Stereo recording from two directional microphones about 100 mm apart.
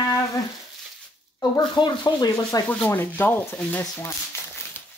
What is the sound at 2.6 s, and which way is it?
Speech, 20° left (ahead or behind).